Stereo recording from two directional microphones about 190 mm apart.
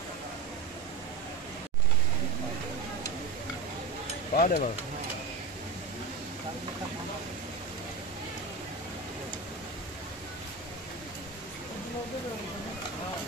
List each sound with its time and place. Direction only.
4.4 s speech: 50° left (ahead or behind)